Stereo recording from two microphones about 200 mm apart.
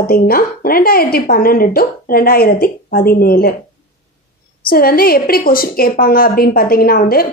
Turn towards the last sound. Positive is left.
turn(degrees=45)  # may be behind; listen again after turning